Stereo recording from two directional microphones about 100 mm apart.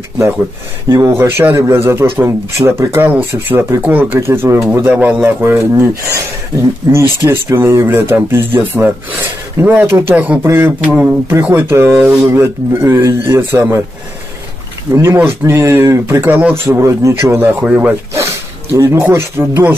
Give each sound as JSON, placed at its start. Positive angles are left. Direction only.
{"t": 0.8, "sound": "speech", "side_deg": -25}
{"t": 4.9, "sound": "speech", "side_deg": -15}
{"t": 5.4, "sound": "speech", "side_deg": -25}
{"t": 15.0, "sound": "speech", "side_deg": -25}
{"t": 16.6, "sound": "speech", "side_deg": -30}
{"t": 17.5, "sound": "speech", "side_deg": -15}
{"t": 18.1, "sound": "dog", "side_deg": -30}
{"t": 19.0, "sound": "speech", "side_deg": -25}